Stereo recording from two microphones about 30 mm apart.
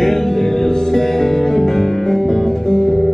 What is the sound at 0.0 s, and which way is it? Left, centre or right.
Music, centre.